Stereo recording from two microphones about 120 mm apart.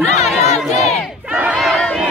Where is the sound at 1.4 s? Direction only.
5° right (ahead or behind).